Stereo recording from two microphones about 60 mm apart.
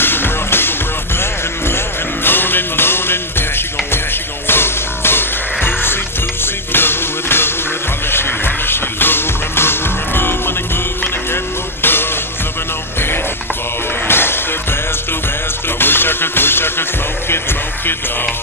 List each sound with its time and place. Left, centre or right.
0.0 s music: left
2.2 s music: left
11.8 s music: left
14.0 s music: left
15.8 s music: left